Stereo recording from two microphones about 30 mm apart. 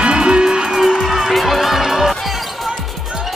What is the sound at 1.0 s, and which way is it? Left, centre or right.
Music, centre.